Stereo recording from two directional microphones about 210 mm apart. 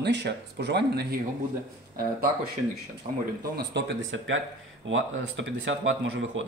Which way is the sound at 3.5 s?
55° right (ahead or behind).